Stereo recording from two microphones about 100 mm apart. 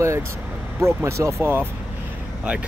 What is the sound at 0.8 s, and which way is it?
Speech, 30° right (ahead or behind).